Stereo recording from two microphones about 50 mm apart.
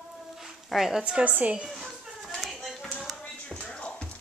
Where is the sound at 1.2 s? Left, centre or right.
Right.